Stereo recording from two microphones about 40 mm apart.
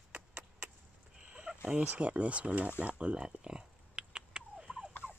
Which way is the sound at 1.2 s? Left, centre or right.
Right.